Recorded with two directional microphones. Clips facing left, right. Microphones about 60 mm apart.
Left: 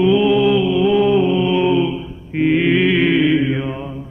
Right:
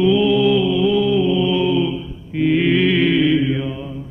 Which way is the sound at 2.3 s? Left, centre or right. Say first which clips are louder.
Left 1 dB; left.